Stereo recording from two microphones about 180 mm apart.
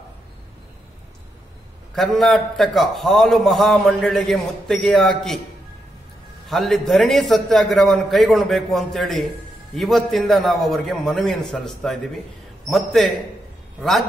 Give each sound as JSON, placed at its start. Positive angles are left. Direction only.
{"t": 2.0, "sound": "a man's voice", "side_deg": 0}
{"t": 6.5, "sound": "a man's voice", "side_deg": 0}